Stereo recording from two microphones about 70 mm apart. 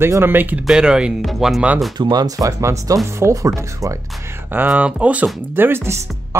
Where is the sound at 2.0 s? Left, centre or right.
Right.